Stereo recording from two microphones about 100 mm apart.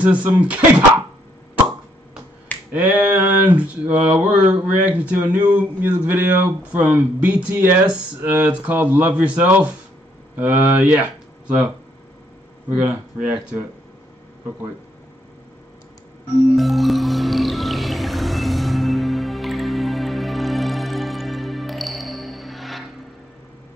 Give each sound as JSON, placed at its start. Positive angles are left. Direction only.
{"t": 0.0, "sound": "speech", "side_deg": -15}
{"t": 2.7, "sound": "speech", "side_deg": -15}
{"t": 10.9, "sound": "a sound", "side_deg": -15}
{"t": 12.7, "sound": "speech", "side_deg": -15}
{"t": 16.3, "sound": "music", "side_deg": 0}